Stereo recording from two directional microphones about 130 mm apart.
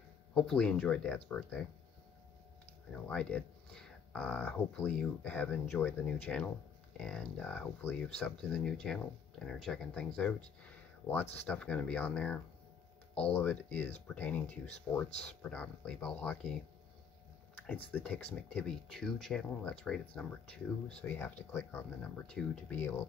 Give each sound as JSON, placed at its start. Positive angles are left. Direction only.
{"t": 0.3, "sound": "speech", "side_deg": 5}
{"t": 2.9, "sound": "speech", "side_deg": 5}
{"t": 10.6, "sound": "a sound", "side_deg": 15}
{"t": 11.4, "sound": "speech", "side_deg": 10}
{"t": 17.9, "sound": "speech", "side_deg": 10}
{"t": 22.8, "sound": "speech", "side_deg": 15}